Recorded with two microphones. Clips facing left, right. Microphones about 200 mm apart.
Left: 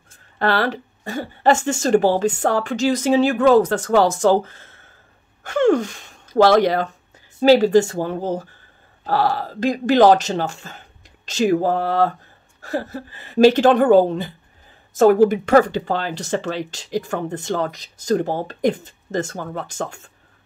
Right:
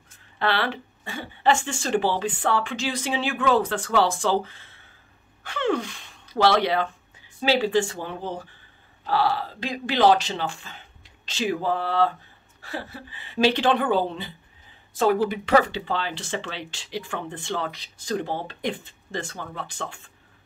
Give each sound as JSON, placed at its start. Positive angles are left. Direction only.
{"t": 0.4, "sound": "speech", "side_deg": 40}